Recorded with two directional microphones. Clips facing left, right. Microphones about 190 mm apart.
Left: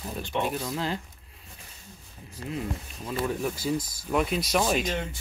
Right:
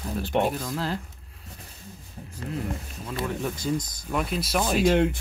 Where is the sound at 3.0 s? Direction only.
5° left (ahead or behind).